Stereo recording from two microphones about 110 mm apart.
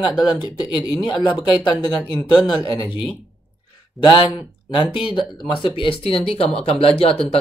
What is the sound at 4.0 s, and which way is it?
Speech, 45° left (ahead or behind).